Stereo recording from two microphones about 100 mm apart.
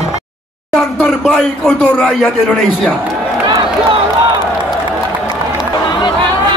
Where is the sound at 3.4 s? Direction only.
55° right (ahead or behind).